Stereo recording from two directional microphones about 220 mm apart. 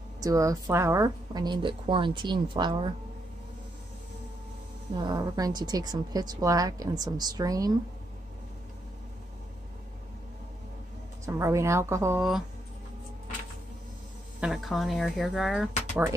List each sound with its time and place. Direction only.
0.2 s a woman's voice: 15° right (ahead or behind)
4.9 s a woman's voice: 20° right (ahead or behind)
11.2 s a woman's voice: 15° right (ahead or behind)
12.2 s speech: centre (ahead or behind)
14.4 s speech: centre (ahead or behind)